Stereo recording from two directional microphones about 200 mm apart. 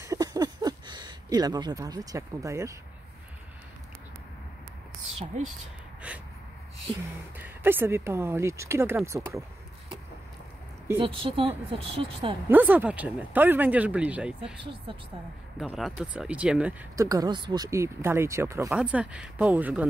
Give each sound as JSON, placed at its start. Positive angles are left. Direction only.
{"t": 0.0, "sound": "a sound", "side_deg": -15}
{"t": 6.0, "sound": "a sound", "side_deg": -5}
{"t": 7.3, "sound": "speech", "side_deg": -10}
{"t": 10.9, "sound": "speech", "side_deg": -10}
{"t": 11.2, "sound": "a woman's voice", "side_deg": -25}
{"t": 12.4, "sound": "speech", "side_deg": -10}
{"t": 14.6, "sound": "a woman's voice", "side_deg": -25}
{"t": 15.6, "sound": "speech", "side_deg": -5}
{"t": 16.9, "sound": "speech", "side_deg": -15}